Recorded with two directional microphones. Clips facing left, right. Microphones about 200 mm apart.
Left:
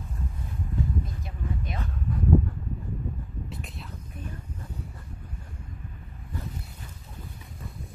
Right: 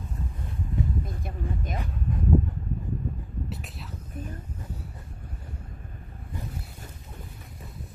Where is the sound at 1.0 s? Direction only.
50° right (ahead or behind).